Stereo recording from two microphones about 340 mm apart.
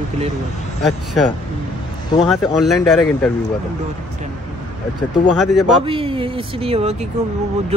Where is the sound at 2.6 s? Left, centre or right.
Centre.